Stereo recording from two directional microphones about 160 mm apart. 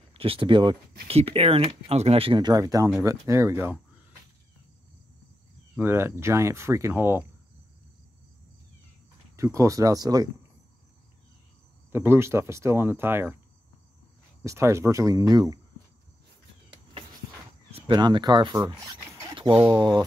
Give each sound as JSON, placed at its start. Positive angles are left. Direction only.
{"t": 0.1, "sound": "speech", "side_deg": -35}
{"t": 5.8, "sound": "speech", "side_deg": -15}
{"t": 9.4, "sound": "speech", "side_deg": -20}
{"t": 11.9, "sound": "speech", "side_deg": -15}
{"t": 14.4, "sound": "speech", "side_deg": -20}
{"t": 17.7, "sound": "speech", "side_deg": -30}